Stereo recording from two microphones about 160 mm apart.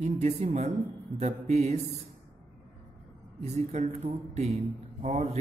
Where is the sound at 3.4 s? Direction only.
40° right (ahead or behind).